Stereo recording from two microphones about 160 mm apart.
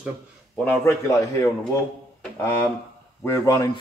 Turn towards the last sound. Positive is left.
turn(degrees=20)  # may be behind; listen again after turning